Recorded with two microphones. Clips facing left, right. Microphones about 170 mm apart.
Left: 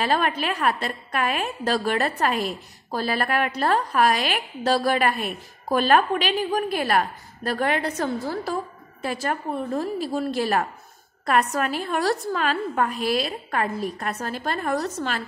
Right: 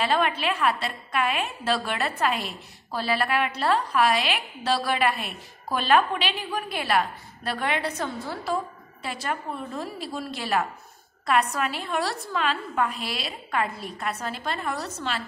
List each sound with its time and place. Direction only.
0.0 s a woman's voice: 45° left (ahead or behind)